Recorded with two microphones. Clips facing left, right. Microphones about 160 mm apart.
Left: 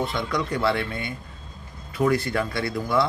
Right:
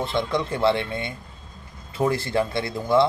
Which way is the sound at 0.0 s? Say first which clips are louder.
Right 2 dB; 25° right (ahead or behind).